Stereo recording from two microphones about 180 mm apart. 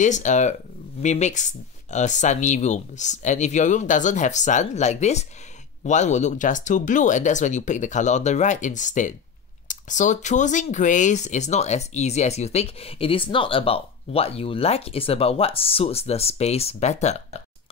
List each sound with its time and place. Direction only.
0.0 s speech: 40° left (ahead or behind)